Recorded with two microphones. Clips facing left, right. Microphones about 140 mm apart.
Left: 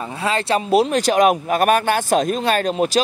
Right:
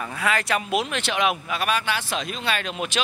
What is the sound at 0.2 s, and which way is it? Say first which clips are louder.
Speech: left 5 dB; 30° left (ahead or behind).